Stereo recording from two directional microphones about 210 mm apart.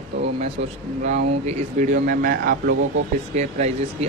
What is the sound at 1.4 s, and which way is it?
Speech, 35° right (ahead or behind).